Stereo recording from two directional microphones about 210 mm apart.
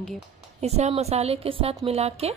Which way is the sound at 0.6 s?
30° right (ahead or behind).